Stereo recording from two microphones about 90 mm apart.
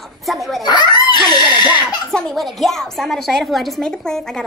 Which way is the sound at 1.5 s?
55° left (ahead or behind).